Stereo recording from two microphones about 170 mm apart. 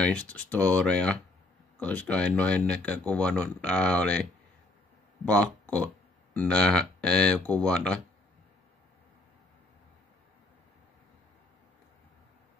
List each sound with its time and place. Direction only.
0.0 s speech: 5° left (ahead or behind)